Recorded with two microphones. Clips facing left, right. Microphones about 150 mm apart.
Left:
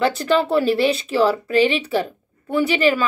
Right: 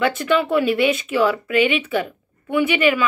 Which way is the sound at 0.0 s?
35° left (ahead or behind).